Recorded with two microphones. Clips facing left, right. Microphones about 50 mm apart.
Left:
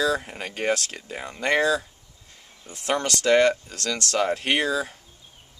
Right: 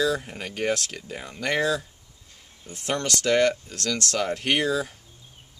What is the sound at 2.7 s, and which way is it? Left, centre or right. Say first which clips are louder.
Speech: left 2 dB; left.